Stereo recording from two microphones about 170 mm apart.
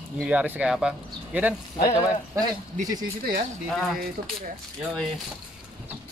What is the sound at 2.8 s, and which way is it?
Speech, 55° right (ahead or behind).